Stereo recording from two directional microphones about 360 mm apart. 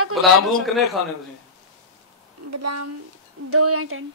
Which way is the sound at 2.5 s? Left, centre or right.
Right.